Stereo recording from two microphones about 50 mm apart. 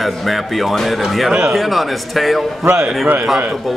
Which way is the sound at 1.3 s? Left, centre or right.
Centre.